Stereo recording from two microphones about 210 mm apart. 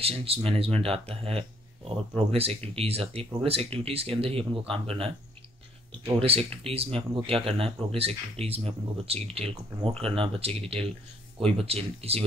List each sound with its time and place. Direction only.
0.0 s speech: 30° right (ahead or behind)